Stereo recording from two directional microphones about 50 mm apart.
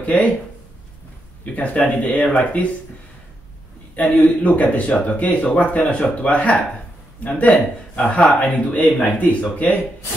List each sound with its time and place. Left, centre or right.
0.0 s speech: left
1.4 s speech: left
3.9 s a man's voice: left